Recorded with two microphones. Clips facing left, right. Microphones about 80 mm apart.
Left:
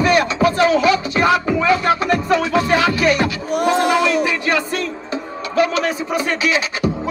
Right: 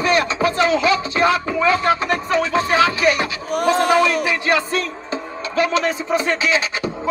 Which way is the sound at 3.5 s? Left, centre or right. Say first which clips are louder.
Right 1 dB; right.